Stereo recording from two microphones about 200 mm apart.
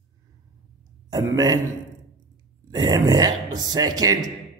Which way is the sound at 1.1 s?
20° right (ahead or behind).